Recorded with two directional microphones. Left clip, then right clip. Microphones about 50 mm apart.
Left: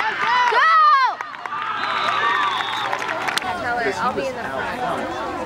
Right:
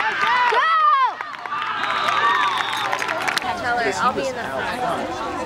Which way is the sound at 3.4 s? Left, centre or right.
Right.